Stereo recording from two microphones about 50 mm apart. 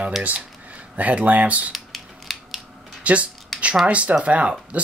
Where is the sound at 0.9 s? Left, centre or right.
Right.